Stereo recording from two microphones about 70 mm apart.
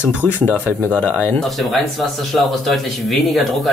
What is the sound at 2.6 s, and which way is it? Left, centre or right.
Speech, centre.